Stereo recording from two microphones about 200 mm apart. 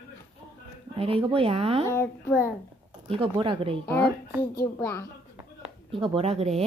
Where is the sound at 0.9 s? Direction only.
30° right (ahead or behind).